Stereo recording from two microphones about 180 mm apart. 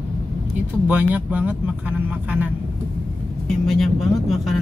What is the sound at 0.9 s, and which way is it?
Speech, 10° right (ahead or behind).